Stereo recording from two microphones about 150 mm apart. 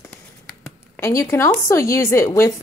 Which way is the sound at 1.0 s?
20° left (ahead or behind).